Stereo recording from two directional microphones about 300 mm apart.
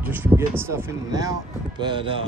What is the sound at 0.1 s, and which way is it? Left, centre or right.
Speech, centre.